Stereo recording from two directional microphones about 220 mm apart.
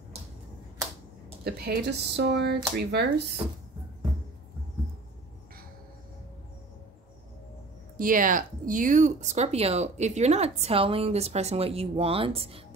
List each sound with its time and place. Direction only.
1.4 s speech: 45° right (ahead or behind)
8.0 s speech: 40° right (ahead or behind)